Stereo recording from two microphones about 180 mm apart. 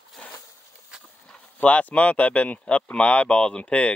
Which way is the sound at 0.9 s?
5° right (ahead or behind).